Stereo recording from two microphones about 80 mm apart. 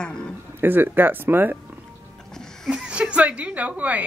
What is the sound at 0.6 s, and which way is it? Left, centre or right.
Speech, right.